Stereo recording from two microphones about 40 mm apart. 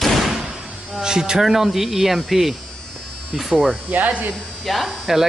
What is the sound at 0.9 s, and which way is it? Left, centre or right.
Speech, centre.